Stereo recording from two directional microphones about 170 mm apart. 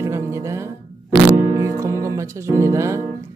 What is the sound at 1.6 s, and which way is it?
Speech, 15° right (ahead or behind).